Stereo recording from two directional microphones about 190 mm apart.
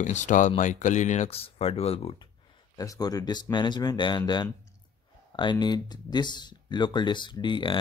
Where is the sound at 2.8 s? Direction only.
20° left (ahead or behind).